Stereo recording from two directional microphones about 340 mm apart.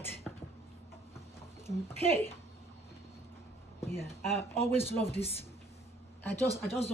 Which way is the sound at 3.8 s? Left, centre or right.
Centre.